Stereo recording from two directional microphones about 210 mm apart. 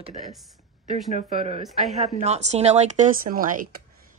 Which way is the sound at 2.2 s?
30° right (ahead or behind).